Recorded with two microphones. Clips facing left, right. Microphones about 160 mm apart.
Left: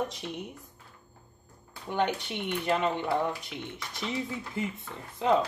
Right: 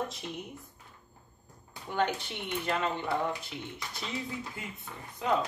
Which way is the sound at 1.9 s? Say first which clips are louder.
Left 2 dB; 20° left (ahead or behind).